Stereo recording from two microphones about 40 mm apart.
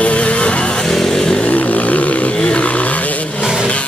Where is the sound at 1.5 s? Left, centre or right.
Left.